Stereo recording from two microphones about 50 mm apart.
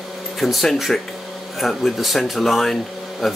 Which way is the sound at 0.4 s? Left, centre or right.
Centre.